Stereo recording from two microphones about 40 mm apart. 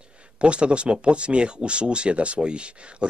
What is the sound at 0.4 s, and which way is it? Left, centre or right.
Speech, right.